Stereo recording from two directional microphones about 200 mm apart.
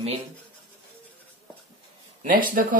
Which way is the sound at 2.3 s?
45° right (ahead or behind).